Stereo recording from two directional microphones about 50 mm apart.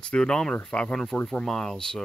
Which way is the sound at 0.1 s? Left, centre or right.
Centre.